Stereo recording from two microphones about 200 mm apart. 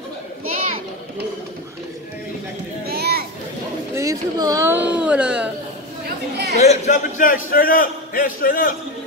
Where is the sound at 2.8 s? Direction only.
50° right (ahead or behind).